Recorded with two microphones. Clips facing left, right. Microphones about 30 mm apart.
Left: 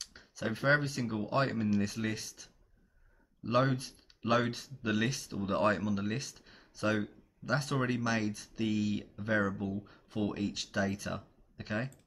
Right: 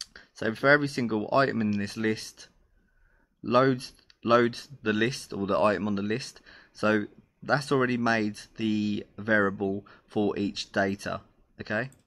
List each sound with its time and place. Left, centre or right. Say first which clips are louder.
0.0 s speech: right 6 dB; right